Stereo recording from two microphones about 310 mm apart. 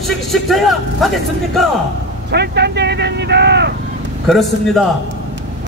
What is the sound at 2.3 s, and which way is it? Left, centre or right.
Vehicle, right.